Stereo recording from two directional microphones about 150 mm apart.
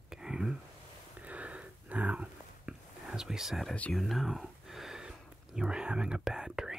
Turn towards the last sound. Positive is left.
turn(degrees=-5)  # may be behind; listen again after turning